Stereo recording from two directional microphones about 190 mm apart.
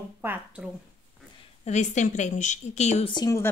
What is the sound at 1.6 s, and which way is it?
A woman's voice, 40° left (ahead or behind).